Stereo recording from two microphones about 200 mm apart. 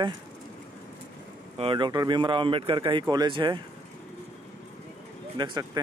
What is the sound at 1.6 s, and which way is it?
Speech, 25° right (ahead or behind).